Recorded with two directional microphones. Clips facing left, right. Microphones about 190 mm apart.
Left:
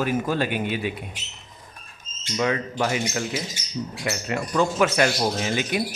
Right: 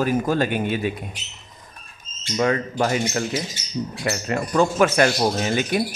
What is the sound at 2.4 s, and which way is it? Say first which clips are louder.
A man's voice: right 3 dB; 45° right (ahead or behind).